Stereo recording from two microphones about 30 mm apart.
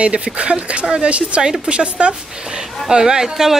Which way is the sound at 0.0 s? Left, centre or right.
Right.